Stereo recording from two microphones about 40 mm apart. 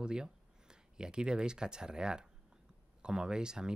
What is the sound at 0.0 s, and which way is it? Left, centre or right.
Speech, centre.